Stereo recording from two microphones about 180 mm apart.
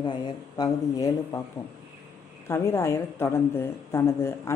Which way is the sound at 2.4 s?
15° left (ahead or behind).